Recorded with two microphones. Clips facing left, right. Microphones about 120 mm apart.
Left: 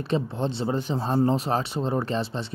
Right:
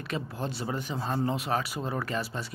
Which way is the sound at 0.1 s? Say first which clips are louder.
Left 7 dB; 25° left (ahead or behind).